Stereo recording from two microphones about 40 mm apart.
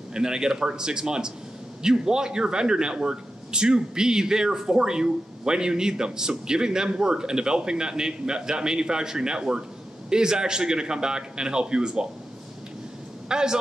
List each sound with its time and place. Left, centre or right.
0.1 s a man's voice: centre
13.3 s a man's voice: centre